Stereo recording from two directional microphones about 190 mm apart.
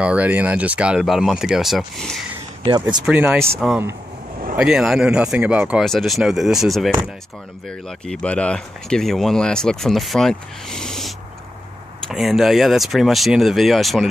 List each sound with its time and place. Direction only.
0.0 s speech: 5° right (ahead or behind)
2.6 s speech: 20° right (ahead or behind)
3.1 s speech: 10° right (ahead or behind)